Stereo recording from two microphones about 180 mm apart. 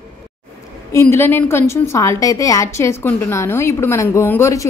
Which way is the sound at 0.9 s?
15° left (ahead or behind).